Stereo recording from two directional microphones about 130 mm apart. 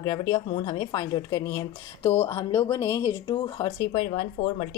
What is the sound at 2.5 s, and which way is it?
Speech, 20° left (ahead or behind).